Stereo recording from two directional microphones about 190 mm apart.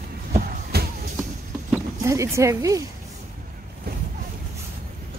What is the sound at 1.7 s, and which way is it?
Speech, 15° right (ahead or behind).